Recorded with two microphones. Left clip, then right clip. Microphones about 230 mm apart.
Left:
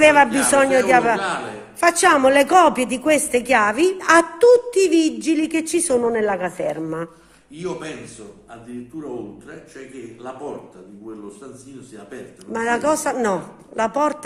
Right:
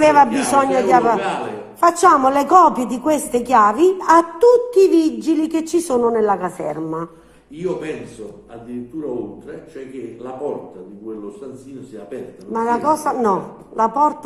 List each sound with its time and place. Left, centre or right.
0.0 s a woman's voice: left
12.5 s a woman's voice: left
13.3 s a woman's voice: left